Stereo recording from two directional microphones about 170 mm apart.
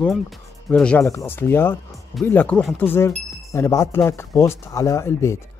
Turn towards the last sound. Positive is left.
turn(degrees=15)  # may be behind; listen again after turning